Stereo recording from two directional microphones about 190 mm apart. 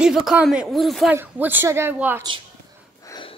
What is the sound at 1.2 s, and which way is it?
Speech, 10° right (ahead or behind).